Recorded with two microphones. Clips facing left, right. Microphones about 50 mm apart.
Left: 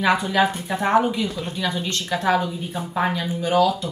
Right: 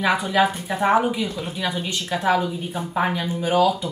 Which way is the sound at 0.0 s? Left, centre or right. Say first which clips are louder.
Even; centre.